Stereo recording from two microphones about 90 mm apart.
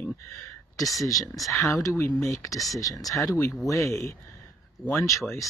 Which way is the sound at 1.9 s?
30° left (ahead or behind).